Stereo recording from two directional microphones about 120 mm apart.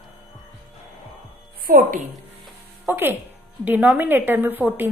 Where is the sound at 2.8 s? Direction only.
15° right (ahead or behind).